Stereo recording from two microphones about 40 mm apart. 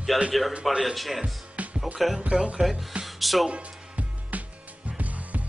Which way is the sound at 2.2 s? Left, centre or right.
Right.